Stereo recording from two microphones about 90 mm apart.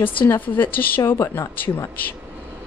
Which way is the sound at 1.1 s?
30° left (ahead or behind).